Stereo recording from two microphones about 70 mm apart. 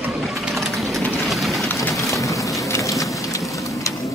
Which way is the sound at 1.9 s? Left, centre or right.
Left.